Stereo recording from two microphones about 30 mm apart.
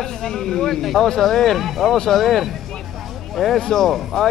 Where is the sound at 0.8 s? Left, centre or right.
Centre.